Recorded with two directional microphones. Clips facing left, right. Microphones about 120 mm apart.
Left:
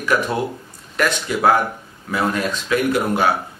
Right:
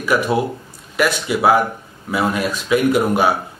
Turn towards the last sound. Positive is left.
turn(degrees=-15)  # may be behind; listen again after turning